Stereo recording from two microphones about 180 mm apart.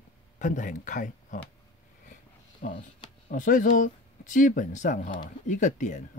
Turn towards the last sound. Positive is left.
turn(degrees=45)  # may be behind; listen again after turning